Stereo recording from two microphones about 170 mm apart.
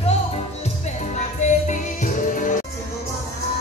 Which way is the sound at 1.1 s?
45° left (ahead or behind).